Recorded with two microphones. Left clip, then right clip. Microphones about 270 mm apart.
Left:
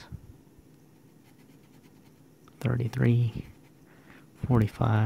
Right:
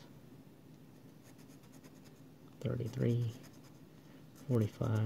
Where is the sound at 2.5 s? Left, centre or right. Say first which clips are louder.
Left 8 dB; left.